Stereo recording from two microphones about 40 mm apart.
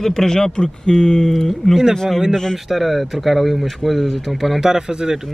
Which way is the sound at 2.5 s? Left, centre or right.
Centre.